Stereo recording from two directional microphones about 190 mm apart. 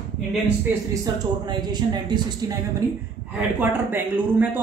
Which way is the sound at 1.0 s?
25° right (ahead or behind).